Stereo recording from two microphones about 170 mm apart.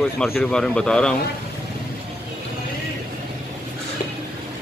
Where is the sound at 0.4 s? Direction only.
5° left (ahead or behind).